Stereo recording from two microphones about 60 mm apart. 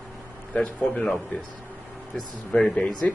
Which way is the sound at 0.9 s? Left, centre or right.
Centre.